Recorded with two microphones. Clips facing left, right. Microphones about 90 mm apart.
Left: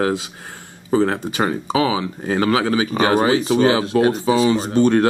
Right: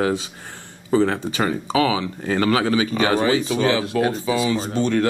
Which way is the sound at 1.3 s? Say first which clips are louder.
Left 1 dB; 20° left (ahead or behind).